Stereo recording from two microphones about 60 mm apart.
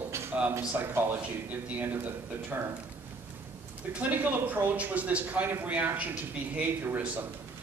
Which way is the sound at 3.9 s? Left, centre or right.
Right.